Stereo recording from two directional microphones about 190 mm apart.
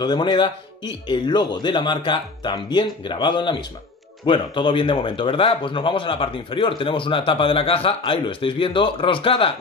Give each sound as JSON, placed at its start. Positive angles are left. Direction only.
{"t": 0.0, "sound": "a man's voice", "side_deg": 25}